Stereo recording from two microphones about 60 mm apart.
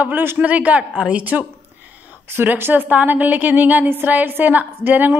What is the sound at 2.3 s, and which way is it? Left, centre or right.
A woman's voice, right.